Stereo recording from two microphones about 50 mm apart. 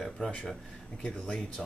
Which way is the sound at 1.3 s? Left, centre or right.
Centre.